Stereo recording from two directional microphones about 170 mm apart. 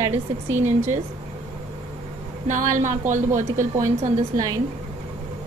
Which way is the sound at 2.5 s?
45° right (ahead or behind).